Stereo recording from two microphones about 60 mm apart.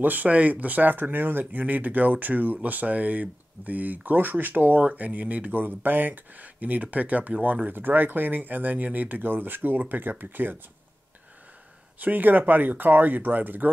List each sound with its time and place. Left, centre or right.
0.0 s speech: right
12.0 s speech: right